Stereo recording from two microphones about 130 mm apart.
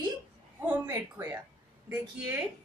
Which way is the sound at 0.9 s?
25° right (ahead or behind).